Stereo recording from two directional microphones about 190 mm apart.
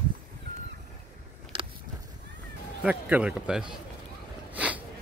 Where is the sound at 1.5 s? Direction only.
30° right (ahead or behind).